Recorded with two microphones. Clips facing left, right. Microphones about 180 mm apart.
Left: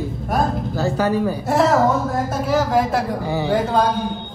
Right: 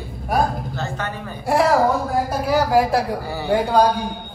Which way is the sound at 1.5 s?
Centre (ahead or behind).